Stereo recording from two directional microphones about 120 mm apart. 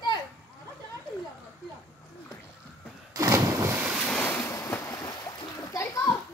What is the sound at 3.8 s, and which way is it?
Waves, 10° right (ahead or behind).